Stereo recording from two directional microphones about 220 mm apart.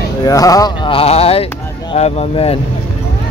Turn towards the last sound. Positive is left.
turn(degrees=25)  # may be behind; listen again after turning